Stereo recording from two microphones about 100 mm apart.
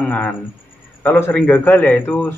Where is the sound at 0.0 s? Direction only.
15° left (ahead or behind).